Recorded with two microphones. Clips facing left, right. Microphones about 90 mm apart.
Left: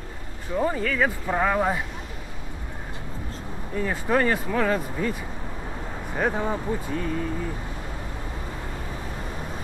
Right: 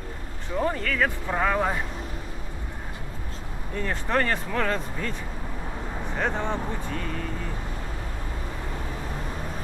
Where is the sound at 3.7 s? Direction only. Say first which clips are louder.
Left 3 dB; 5° left (ahead or behind).